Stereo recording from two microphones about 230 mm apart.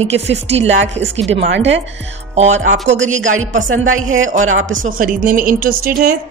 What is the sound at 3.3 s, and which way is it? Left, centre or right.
A woman's voice, right.